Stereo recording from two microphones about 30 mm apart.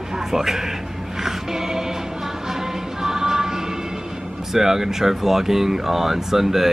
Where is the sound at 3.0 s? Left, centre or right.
Centre.